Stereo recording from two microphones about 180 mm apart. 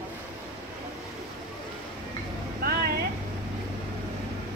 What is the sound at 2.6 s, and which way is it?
Vehicle, 60° right (ahead or behind).